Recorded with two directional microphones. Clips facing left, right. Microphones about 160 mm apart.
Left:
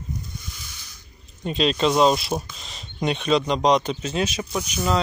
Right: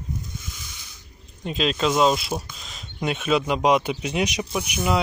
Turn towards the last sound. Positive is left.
turn(degrees=-10)  # may be behind; listen again after turning